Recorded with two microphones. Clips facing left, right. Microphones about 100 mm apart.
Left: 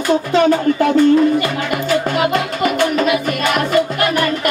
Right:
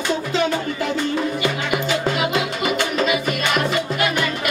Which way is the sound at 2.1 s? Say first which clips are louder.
Left 5 dB; 50° left (ahead or behind).